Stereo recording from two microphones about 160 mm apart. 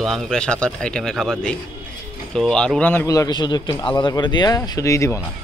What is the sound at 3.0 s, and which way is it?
A man's voice, 20° left (ahead or behind).